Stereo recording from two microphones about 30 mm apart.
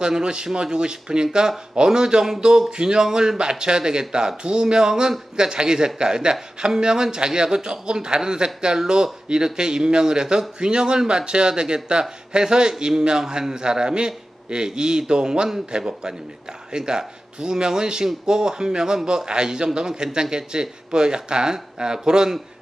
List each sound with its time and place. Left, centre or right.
0.2 s a man's voice: right